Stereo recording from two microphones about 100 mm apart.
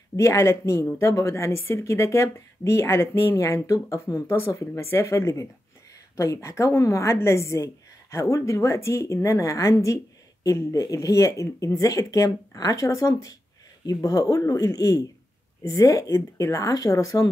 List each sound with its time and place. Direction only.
0.1 s a woman's voice: 30° left (ahead or behind)